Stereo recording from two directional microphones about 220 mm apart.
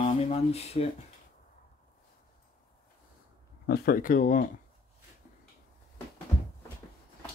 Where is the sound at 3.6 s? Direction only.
45° left (ahead or behind).